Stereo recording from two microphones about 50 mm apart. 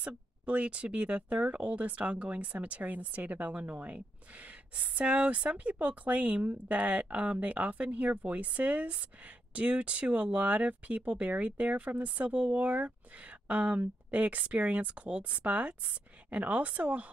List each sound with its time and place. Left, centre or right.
0.0 s speech: right